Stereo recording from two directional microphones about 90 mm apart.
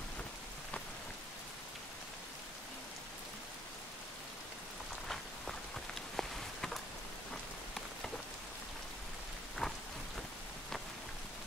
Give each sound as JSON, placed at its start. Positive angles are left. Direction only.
{"t": 5.0, "sound": "rain on surface", "side_deg": 5}
{"t": 6.1, "sound": "a sound", "side_deg": 5}
{"t": 9.6, "sound": "rain", "side_deg": 5}